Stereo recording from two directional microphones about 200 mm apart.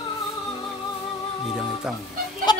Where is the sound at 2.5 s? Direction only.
20° left (ahead or behind).